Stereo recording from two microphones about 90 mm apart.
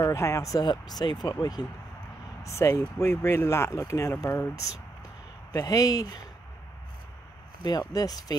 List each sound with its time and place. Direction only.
0.0 s speech: 35° left (ahead or behind)
0.7 s speech: 50° left (ahead or behind)
2.4 s speech: 35° left (ahead or behind)
7.6 s speech: 50° left (ahead or behind)